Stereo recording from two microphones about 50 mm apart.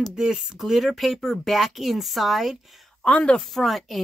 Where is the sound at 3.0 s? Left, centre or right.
Centre.